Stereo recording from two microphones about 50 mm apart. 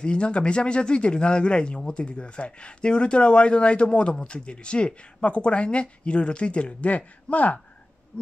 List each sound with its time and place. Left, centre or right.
0.0 s speech: centre